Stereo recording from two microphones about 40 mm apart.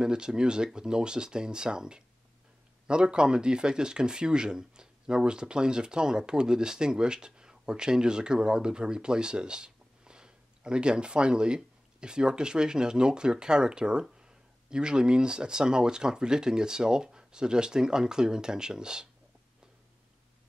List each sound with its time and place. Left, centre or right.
0.0 s speech: centre